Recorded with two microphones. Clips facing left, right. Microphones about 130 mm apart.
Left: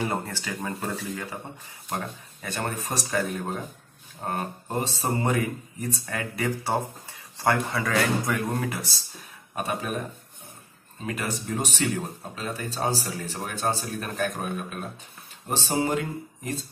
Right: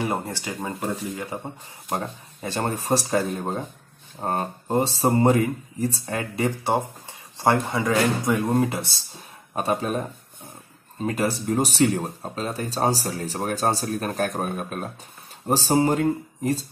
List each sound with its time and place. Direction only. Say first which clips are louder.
0.0 s speech: right 2 dB; 15° right (ahead or behind); by 16.6 s 40° right (ahead or behind)